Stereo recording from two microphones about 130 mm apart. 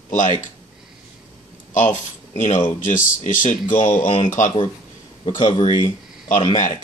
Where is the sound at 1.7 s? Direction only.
75° left (ahead or behind).